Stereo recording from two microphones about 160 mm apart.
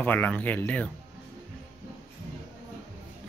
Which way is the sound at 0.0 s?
10° left (ahead or behind).